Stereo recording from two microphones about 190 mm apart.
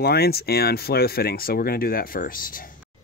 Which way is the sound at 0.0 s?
55° left (ahead or behind).